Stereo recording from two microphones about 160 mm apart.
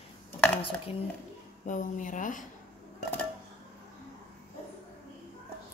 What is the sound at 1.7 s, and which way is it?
Speech, 55° left (ahead or behind).